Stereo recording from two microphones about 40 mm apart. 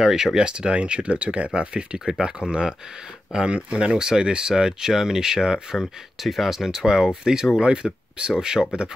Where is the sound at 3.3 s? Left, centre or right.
Right.